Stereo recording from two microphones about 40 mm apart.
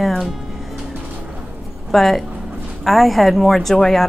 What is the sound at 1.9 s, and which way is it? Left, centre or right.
A woman's voice, centre.